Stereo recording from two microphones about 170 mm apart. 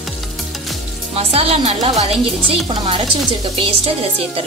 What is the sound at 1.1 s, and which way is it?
Speech, 35° right (ahead or behind).